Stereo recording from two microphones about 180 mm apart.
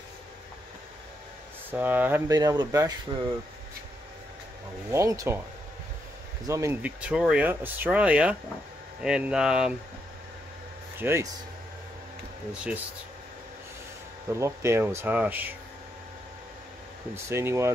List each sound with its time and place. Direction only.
1.7 s speech: 10° right (ahead or behind); by 3.2 s 30° right (ahead or behind)
4.9 s speech: 15° right (ahead or behind)
6.4 s speech: 15° right (ahead or behind)
11.0 s speech: 15° right (ahead or behind)
14.3 s speech: 15° right (ahead or behind)
17.1 s speech: 15° right (ahead or behind)